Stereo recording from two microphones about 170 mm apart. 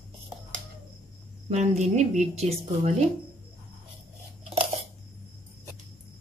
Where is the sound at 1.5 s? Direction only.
40° right (ahead or behind).